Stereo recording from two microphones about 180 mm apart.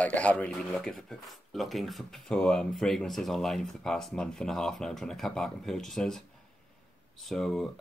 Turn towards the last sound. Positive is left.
turn(degrees=0)  # may be behind; listen again after turning